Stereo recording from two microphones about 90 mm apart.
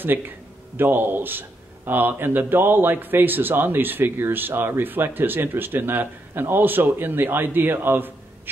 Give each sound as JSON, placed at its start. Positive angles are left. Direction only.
{"t": 0.7, "sound": "a man's voice", "side_deg": -25}